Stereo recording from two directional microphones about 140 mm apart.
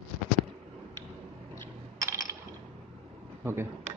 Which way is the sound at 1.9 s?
25° right (ahead or behind).